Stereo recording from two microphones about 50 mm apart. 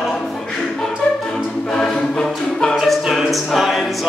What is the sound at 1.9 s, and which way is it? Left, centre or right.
Music, centre.